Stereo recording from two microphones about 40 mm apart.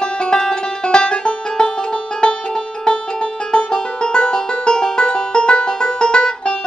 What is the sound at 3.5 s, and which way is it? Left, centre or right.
Music, left.